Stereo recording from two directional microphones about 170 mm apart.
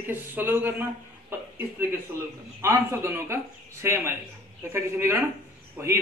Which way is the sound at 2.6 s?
15° right (ahead or behind).